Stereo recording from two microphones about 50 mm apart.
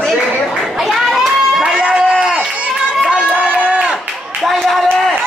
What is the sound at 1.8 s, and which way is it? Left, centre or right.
Run, right.